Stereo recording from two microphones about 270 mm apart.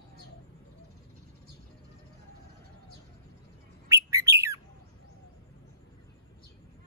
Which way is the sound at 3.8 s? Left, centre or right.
Centre.